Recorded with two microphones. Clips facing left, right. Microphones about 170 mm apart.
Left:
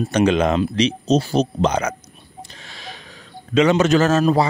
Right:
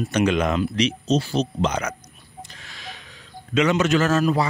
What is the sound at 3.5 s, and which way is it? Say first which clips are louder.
Speech: left 4 dB; 30° left (ahead or behind).